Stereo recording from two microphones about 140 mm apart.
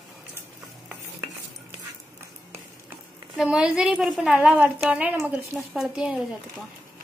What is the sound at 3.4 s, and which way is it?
A woman's voice, 5° right (ahead or behind).